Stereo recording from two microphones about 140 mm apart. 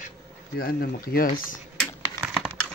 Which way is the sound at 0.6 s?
90° left.